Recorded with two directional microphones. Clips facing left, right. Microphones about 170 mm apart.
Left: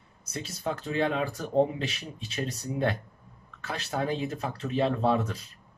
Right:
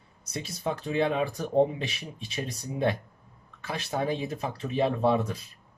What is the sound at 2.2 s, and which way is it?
Speech, 15° right (ahead or behind).